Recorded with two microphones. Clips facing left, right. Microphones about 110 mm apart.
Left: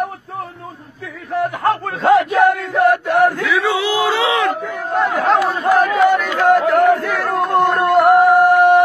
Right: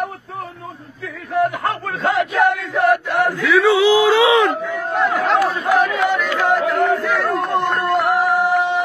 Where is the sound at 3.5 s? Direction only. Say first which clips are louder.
Right 4 dB; centre (ahead or behind).